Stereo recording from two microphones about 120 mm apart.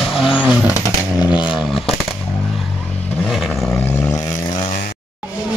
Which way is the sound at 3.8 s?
25° left (ahead or behind).